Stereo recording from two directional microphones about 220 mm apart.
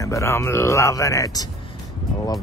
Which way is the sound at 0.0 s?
15° left (ahead or behind).